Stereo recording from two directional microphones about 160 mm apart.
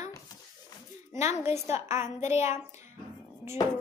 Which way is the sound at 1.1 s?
15° right (ahead or behind).